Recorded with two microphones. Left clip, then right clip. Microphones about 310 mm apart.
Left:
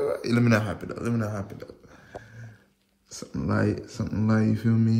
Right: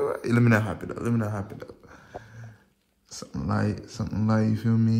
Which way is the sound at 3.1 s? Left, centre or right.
Centre.